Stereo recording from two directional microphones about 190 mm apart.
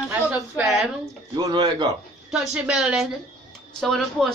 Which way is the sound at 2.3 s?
5° right (ahead or behind).